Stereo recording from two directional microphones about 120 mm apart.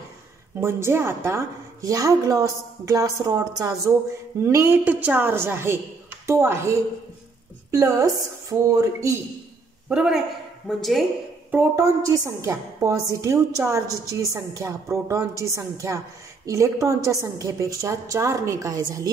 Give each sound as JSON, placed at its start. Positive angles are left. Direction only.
{"t": 0.6, "sound": "a woman's voice", "side_deg": -20}
{"t": 9.8, "sound": "a man's voice", "side_deg": -5}
{"t": 11.5, "sound": "a woman's voice", "side_deg": -25}